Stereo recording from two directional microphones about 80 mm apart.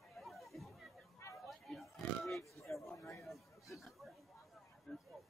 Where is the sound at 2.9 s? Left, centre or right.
Left.